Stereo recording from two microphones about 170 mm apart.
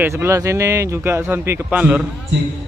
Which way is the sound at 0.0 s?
15° right (ahead or behind).